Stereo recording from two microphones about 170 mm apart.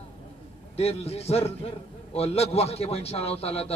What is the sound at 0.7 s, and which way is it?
A man's voice, 35° left (ahead or behind).